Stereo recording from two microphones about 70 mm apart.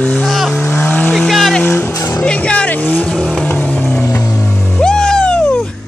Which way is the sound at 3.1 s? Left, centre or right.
Centre.